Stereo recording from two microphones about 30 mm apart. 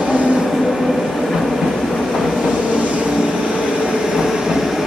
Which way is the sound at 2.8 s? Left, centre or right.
Right.